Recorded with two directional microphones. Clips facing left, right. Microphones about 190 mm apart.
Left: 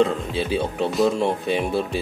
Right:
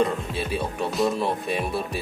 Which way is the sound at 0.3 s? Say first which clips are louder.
Left 4 dB; 25° left (ahead or behind).